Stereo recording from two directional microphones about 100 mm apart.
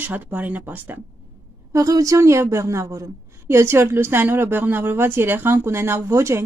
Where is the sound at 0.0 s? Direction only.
15° right (ahead or behind).